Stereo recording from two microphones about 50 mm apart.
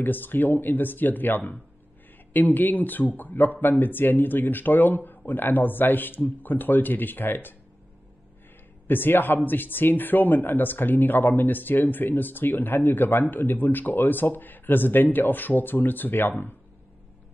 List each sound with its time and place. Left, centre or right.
0.0 s speech: left
8.8 s speech: left